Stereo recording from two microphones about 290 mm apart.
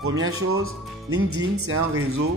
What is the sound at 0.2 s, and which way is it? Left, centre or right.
A man's voice, right.